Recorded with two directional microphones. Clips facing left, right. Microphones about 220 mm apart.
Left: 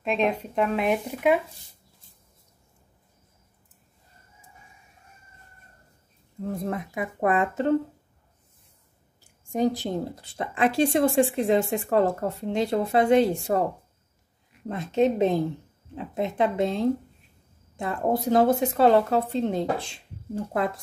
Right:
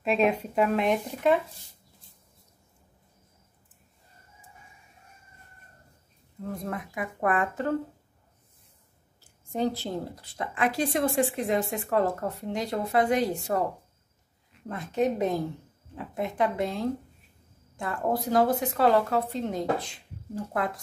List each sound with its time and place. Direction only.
0.0 s speech: 5° right (ahead or behind)
6.5 s speech: 25° left (ahead or behind)
9.2 s speech: 15° left (ahead or behind)
14.7 s speech: 25° left (ahead or behind)